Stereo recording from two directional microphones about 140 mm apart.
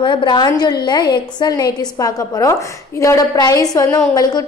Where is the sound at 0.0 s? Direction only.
35° left (ahead or behind).